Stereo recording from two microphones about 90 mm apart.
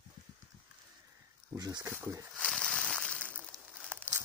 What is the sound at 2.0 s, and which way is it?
Speech, 25° right (ahead or behind).